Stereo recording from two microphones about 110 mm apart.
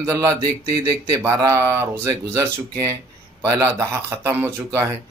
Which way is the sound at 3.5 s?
30° right (ahead or behind).